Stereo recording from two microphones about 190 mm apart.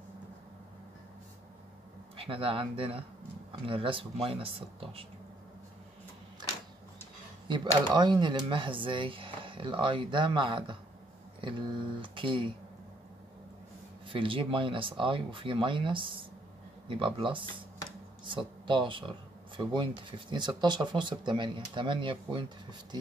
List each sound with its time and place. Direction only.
2.1 s speech: 30° right (ahead or behind)
7.4 s speech: 25° right (ahead or behind)
14.0 s speech: 25° right (ahead or behind)